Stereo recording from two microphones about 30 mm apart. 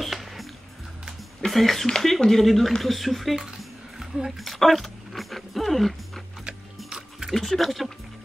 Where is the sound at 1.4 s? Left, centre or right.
Centre.